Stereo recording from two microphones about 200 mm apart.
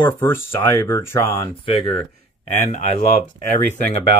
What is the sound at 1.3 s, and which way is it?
Speech, 25° left (ahead or behind).